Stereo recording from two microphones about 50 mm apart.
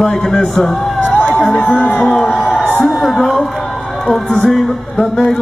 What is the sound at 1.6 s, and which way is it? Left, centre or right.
Speech, left.